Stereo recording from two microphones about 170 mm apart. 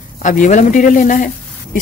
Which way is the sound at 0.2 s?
50° left (ahead or behind).